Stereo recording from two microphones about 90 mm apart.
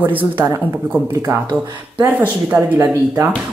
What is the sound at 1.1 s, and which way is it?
Speech, 30° right (ahead or behind).